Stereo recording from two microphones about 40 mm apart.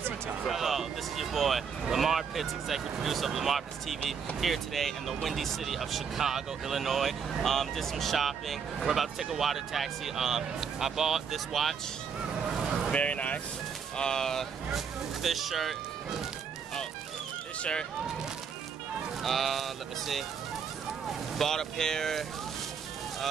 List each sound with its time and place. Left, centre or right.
0.5 s speech: centre
12.4 s vehicle: centre
12.9 s speech: left
13.9 s speech: centre
15.2 s speech: centre
19.2 s speech: centre
21.4 s speech: centre